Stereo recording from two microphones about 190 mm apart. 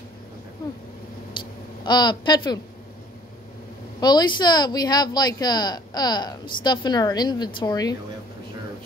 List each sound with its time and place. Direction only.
1.9 s speech: 25° left (ahead or behind)
4.0 s speech: 20° left (ahead or behind)